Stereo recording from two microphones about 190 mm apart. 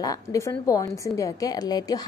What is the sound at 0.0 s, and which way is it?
A woman's voice, 15° left (ahead or behind).